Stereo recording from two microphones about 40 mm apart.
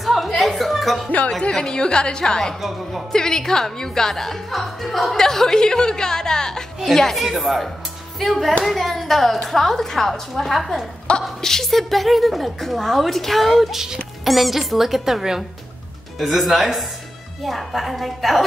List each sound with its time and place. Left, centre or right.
0.0 s music: centre
1.5 s a woman's voice: centre
5.1 s speech: centre
7.2 s a woman's voice: centre
11.1 s a woman's voice: left
11.4 s a woman's voice: centre